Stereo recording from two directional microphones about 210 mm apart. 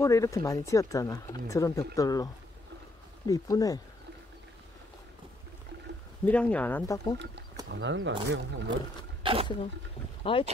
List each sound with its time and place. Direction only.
0.0 s speech: 15° left (ahead or behind)
3.3 s speech: 15° left (ahead or behind)
6.2 s speech: 5° left (ahead or behind)
7.7 s speech: 60° right (ahead or behind)
9.2 s a sound: 25° right (ahead or behind)
10.3 s speech: 25° left (ahead or behind)